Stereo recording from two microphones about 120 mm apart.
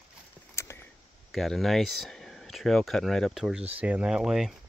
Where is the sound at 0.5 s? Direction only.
20° left (ahead or behind).